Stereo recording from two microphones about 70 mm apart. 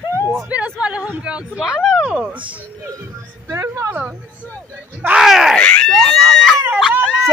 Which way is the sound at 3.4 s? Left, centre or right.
Right.